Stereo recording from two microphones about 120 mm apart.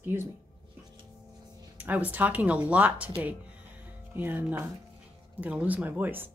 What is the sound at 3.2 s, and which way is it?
Music, 10° right (ahead or behind).